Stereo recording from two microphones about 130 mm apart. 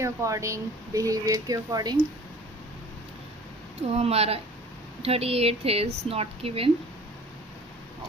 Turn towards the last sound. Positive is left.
turn(degrees=-50)  # may be behind; listen again after turning